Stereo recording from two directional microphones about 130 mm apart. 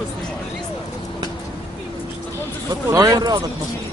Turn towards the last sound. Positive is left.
turn(degrees=-30)  # may be behind; listen again after turning